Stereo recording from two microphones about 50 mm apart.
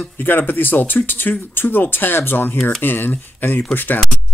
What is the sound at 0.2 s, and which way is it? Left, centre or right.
Speech, left.